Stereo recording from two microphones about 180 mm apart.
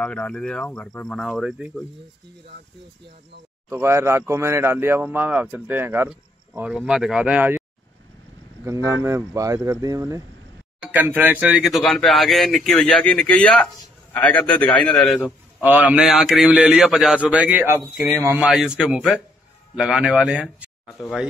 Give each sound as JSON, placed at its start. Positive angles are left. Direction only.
{"t": 0.0, "sound": "speech", "side_deg": 5}
{"t": 3.6, "sound": "speech", "side_deg": -15}
{"t": 8.6, "sound": "a man's voice", "side_deg": -15}
{"t": 15.6, "sound": "speech", "side_deg": -10}
{"t": 18.5, "sound": "speech", "side_deg": 0}